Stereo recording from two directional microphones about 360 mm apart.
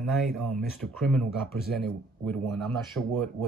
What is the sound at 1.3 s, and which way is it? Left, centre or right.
Speech, left.